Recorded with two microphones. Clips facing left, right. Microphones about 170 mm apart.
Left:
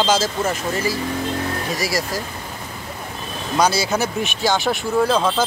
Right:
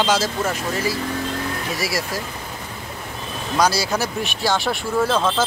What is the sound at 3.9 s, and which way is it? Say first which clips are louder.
Speech: left 2 dB; centre (ahead or behind).